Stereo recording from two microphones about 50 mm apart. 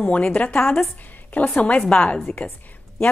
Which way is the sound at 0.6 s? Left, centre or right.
Left.